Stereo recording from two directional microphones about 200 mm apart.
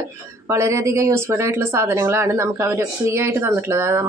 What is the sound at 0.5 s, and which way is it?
Speech, 15° right (ahead or behind).